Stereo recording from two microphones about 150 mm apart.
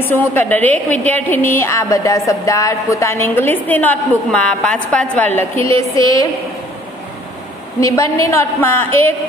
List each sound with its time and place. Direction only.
0.0 s a woman's voice: 15° left (ahead or behind)
7.8 s a woman's voice: 20° left (ahead or behind)